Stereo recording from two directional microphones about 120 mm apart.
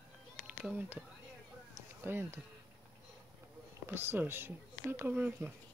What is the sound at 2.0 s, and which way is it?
Speech, 20° right (ahead or behind).